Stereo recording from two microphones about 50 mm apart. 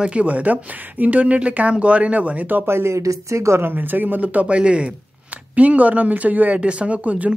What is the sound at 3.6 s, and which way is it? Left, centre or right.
Speech, right.